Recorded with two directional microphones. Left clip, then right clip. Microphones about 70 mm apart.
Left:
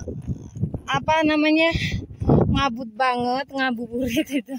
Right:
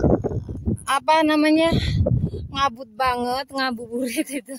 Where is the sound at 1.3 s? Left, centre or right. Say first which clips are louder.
Right 1 dB; right.